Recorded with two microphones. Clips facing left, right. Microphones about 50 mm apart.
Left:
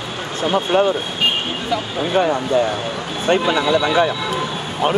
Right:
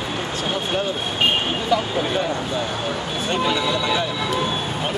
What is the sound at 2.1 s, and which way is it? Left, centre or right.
Speech, left.